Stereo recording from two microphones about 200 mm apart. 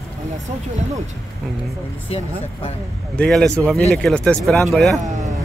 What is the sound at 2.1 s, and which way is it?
Speech, 30° left (ahead or behind).